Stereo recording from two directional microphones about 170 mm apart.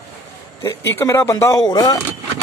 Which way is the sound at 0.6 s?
15° left (ahead or behind).